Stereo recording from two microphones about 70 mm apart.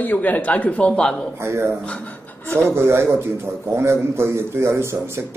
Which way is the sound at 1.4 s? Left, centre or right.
Right.